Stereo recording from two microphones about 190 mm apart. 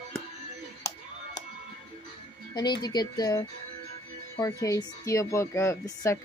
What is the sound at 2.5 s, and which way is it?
A woman's voice, 20° left (ahead or behind).